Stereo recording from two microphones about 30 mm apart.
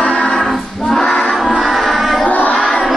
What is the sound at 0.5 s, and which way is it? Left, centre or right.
Choir, centre.